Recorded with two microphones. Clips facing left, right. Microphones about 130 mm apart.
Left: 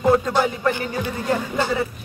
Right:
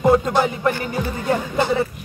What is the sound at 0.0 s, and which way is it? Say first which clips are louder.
Music: right 2 dB; 20° right (ahead or behind).